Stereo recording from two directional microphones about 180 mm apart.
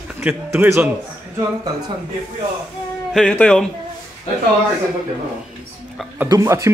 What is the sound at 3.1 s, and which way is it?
Speech, 5° left (ahead or behind).